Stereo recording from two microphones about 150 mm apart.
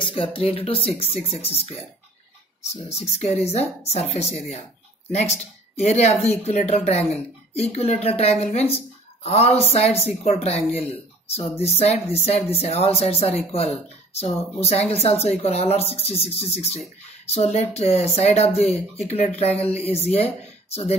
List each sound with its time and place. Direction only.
0.0 s speech: 35° left (ahead or behind)
5.8 s speech: 45° left (ahead or behind)